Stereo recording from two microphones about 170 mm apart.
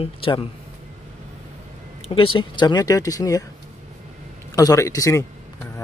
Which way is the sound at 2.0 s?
30° left (ahead or behind).